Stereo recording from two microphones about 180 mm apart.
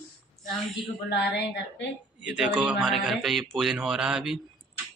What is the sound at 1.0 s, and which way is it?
Speech, 65° left (ahead or behind).